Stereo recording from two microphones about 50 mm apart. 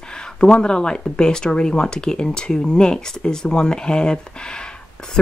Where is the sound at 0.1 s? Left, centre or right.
Centre.